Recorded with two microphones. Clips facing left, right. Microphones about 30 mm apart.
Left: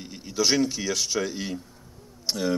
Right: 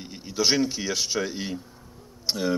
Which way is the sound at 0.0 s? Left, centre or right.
Centre.